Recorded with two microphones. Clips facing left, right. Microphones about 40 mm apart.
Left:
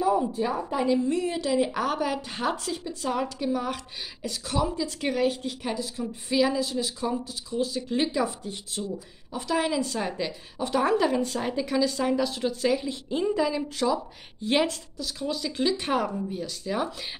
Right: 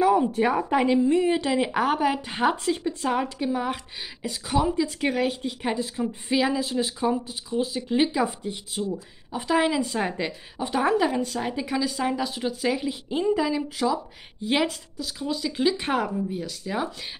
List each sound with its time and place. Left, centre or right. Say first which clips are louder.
0.3 s speech: right 5 dB; right
1.0 s speech: right 5 dB; right
3.5 s a woman's voice: right 2 dB; right
5.7 s speech: right 5 dB; right
9.3 s speech: right 4 dB; right
9.7 s a woman's voice: right 2 dB; centre
10.0 s speech: right 2 dB; right
10.6 s a woman's voice: right 1 dB; centre